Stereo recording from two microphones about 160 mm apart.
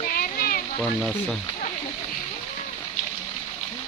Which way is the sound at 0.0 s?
65° left (ahead or behind).